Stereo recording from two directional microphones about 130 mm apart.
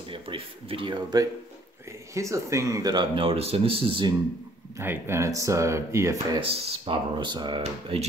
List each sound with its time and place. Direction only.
0.1 s speech: 45° right (ahead or behind)
4.7 s speech: 20° right (ahead or behind)
6.5 s speech: 40° right (ahead or behind)